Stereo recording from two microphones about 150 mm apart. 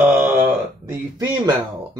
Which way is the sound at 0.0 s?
15° right (ahead or behind).